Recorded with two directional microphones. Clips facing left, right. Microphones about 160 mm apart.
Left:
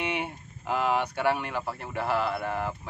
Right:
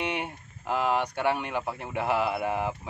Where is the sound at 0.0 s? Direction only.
5° left (ahead or behind).